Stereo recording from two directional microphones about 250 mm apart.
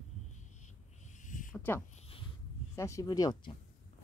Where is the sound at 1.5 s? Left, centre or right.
Centre.